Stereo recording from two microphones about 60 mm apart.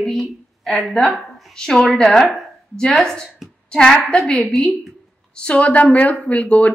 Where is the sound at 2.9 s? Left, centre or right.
Centre.